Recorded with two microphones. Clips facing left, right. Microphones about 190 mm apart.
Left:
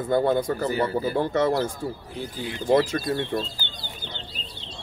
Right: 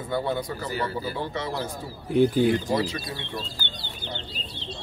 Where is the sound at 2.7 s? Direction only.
50° left (ahead or behind).